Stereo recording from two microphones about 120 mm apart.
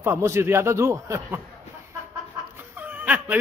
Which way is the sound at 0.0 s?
20° right (ahead or behind).